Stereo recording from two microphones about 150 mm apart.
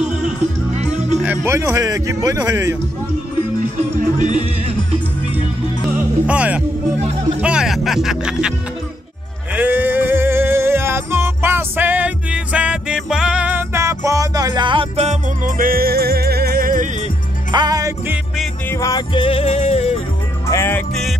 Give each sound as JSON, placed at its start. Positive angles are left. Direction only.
{"t": 1.2, "sound": "speech", "side_deg": -15}
{"t": 4.0, "sound": "music", "side_deg": -55}
{"t": 6.2, "sound": "speech", "side_deg": -10}
{"t": 7.0, "sound": "music", "side_deg": -45}
{"t": 7.4, "sound": "speech", "side_deg": -5}
{"t": 9.5, "sound": "music", "side_deg": -10}
{"t": 15.4, "sound": "music", "side_deg": -70}
{"t": 17.5, "sound": "music", "side_deg": -25}
{"t": 18.7, "sound": "music", "side_deg": 20}
{"t": 20.4, "sound": "music", "side_deg": 15}